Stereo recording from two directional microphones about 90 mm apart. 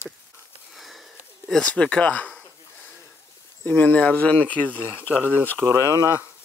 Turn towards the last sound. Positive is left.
turn(degrees=-45)  # may be behind; listen again after turning